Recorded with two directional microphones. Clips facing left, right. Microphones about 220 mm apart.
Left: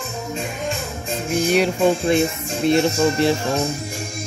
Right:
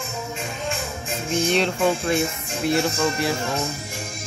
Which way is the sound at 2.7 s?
20° left (ahead or behind).